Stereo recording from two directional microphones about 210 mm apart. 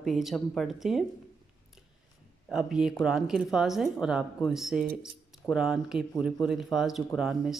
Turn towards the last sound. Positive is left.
turn(degrees=0)  # may be behind; listen again after turning